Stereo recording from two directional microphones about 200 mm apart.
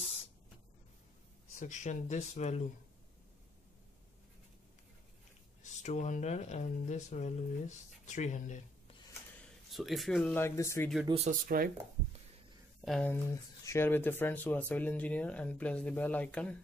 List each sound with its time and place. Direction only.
1.5 s speech: 40° left (ahead or behind)
5.6 s speech: 35° left (ahead or behind)
9.7 s speech: centre (ahead or behind)
11.2 s speech: 45° right (ahead or behind)
12.8 s speech: 5° left (ahead or behind)